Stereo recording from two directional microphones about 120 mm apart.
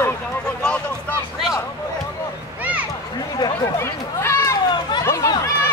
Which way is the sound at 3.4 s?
30° left (ahead or behind).